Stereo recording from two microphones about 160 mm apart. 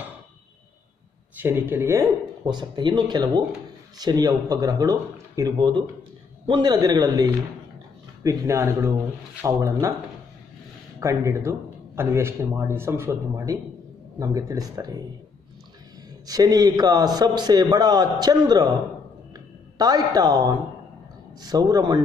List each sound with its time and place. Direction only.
1.4 s speech: 15° right (ahead or behind)
2.4 s a man's voice: 30° right (ahead or behind)
11.0 s a man's voice: 15° right (ahead or behind)
16.3 s a man's voice: 25° right (ahead or behind)
19.8 s a man's voice: 25° right (ahead or behind)